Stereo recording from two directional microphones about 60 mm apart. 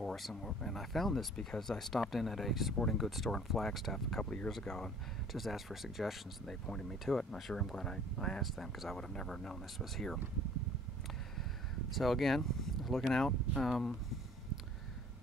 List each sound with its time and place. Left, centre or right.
0.0 s speech: centre
4.2 s speech: centre
4.5 s speech: centre
6.6 s speech: centre
11.9 s speech: centre